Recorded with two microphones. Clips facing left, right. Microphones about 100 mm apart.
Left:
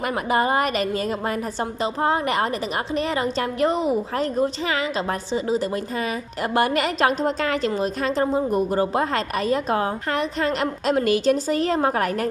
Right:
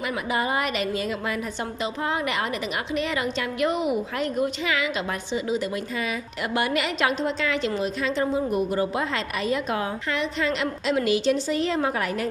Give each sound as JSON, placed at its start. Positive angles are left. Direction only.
{"t": 0.3, "sound": "a woman's voice", "side_deg": 45}